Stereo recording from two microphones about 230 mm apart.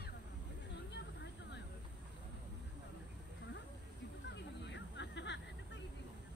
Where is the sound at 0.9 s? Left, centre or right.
Left.